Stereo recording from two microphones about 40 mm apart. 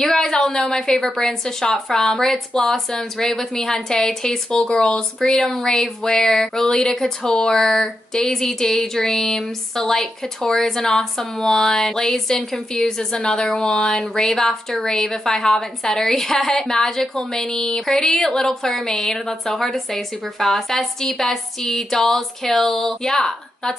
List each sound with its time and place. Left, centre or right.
0.0 s speech: centre
7.2 s speech: left
7.5 s speech: centre